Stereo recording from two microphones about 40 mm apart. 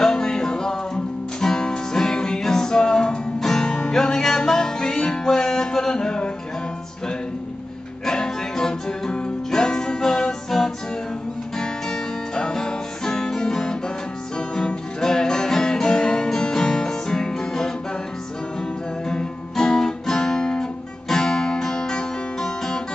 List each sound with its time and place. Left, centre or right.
0.0 s music: centre
8.0 s music: centre
15.0 s music: centre
19.0 s music: centre
21.1 s guitar: centre